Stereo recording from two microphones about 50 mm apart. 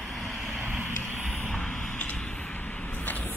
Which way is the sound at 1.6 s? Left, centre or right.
Left.